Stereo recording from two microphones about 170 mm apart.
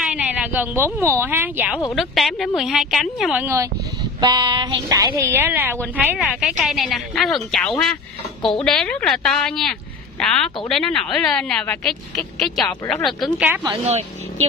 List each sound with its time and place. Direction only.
0.0 s a sound: 5° right (ahead or behind)
1.0 s speech: 10° right (ahead or behind)
2.0 s a woman's voice: centre (ahead or behind)
3.4 s a woman's voice: 20° right (ahead or behind); by 7.7 s 5° left (ahead or behind)
8.4 s a woman's voice: 30° left (ahead or behind)
8.6 s a woman's voice: 5° left (ahead or behind)